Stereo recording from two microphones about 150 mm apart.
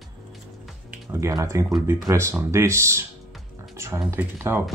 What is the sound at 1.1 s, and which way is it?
Speech, 20° right (ahead or behind).